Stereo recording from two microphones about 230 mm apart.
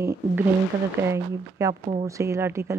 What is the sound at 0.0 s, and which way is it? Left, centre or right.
Speech, centre.